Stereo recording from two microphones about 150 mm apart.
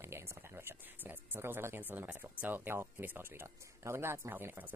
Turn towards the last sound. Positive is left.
turn(degrees=-15)  # may be behind; listen again after turning